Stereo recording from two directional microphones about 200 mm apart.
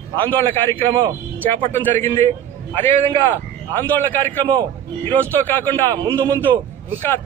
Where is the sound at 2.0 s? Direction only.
35° right (ahead or behind).